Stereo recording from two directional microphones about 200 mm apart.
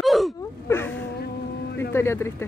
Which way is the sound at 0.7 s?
10° left (ahead or behind).